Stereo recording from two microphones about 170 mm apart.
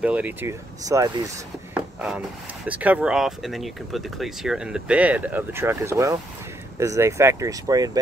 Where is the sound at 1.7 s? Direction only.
5° right (ahead or behind).